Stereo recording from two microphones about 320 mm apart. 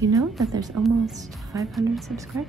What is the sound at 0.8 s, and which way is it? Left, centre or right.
Speech, right.